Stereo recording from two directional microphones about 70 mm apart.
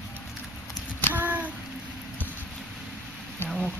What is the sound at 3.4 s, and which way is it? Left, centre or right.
Insect, left.